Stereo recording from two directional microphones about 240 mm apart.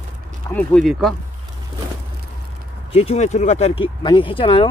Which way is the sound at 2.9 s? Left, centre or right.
Left.